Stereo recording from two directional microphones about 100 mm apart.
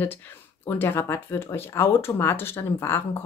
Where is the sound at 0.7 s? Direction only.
20° left (ahead or behind).